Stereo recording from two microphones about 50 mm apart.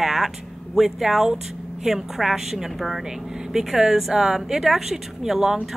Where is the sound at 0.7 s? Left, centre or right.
Centre.